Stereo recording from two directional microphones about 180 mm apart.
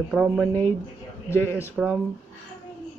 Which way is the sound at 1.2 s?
15° left (ahead or behind).